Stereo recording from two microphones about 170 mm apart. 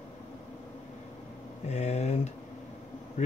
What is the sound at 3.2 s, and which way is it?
Insect, 50° left (ahead or behind).